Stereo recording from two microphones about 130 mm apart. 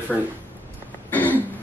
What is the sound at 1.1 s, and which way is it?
Throat clearing, 15° left (ahead or behind).